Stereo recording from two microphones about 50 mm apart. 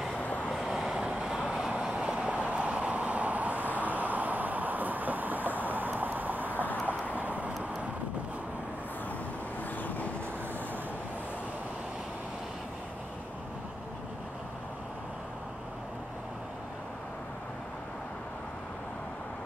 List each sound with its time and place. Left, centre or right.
0.2 s vehicle: left
0.7 s vehicle: centre; by 7.5 s right